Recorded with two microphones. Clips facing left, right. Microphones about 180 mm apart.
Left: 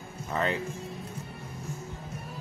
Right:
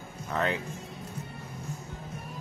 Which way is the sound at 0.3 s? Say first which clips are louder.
Even; centre (ahead or behind).